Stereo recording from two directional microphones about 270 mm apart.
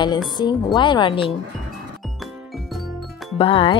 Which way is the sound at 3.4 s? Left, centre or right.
Centre.